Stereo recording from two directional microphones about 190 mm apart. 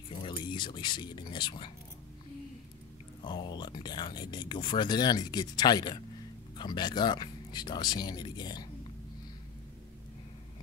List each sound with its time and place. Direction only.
0.1 s speech: 25° left (ahead or behind)
3.3 s speech: 25° left (ahead or behind)